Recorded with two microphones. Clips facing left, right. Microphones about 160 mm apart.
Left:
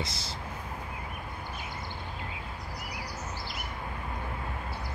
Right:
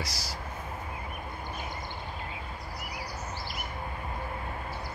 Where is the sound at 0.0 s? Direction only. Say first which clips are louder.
Left 1 dB; 25° left (ahead or behind).